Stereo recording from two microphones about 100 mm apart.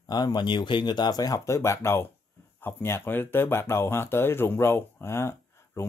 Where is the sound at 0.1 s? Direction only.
45° left (ahead or behind).